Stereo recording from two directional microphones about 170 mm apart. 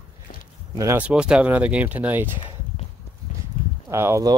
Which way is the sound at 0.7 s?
15° right (ahead or behind).